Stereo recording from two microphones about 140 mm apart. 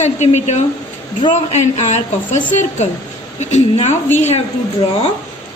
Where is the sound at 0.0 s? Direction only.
55° left (ahead or behind).